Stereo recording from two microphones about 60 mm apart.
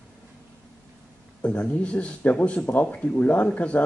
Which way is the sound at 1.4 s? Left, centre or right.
Left.